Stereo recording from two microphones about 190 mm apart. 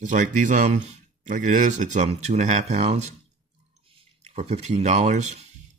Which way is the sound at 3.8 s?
35° right (ahead or behind).